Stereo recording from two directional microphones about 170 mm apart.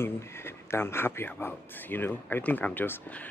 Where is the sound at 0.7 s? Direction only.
15° left (ahead or behind).